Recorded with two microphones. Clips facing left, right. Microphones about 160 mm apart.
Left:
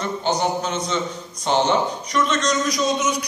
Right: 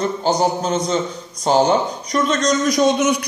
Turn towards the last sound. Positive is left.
turn(degrees=-60)  # may be behind; listen again after turning